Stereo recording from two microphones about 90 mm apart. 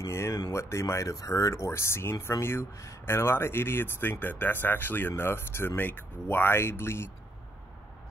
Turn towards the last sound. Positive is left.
turn(degrees=25)  # may be behind; listen again after turning